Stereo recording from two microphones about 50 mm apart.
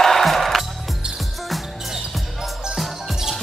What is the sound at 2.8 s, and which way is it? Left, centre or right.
Music, centre.